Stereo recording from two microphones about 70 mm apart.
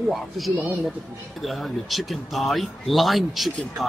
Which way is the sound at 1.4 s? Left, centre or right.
Centre.